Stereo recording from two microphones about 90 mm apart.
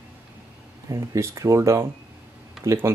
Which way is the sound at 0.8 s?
35° right (ahead or behind).